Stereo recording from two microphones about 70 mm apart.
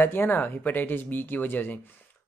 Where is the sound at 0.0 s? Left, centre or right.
Left.